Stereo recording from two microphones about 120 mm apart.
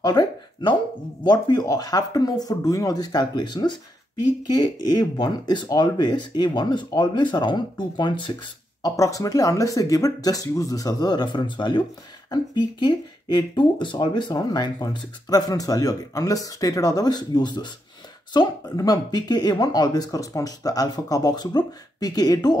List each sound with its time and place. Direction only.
0.0 s a sound: 35° left (ahead or behind)
1.2 s speech: 35° left (ahead or behind)
8.9 s speech: 30° left (ahead or behind)